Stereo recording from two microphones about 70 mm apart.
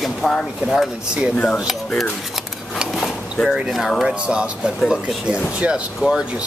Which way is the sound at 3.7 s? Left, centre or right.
Centre.